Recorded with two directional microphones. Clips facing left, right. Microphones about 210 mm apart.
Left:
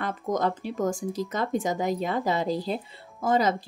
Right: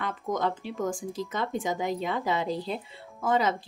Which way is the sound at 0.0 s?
40° left (ahead or behind).